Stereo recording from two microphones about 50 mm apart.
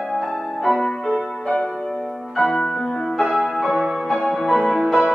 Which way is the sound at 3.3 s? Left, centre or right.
Right.